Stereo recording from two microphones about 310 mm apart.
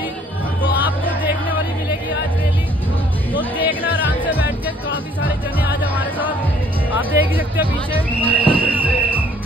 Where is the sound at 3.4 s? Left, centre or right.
Centre.